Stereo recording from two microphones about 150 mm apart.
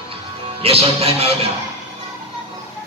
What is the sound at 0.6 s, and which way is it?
Music, 40° right (ahead or behind).